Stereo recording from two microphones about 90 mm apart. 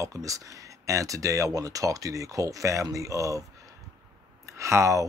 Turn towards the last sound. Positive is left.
turn(degrees=-35)  # may be behind; listen again after turning